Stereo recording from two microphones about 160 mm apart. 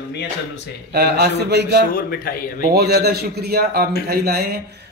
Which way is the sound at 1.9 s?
65° left (ahead or behind).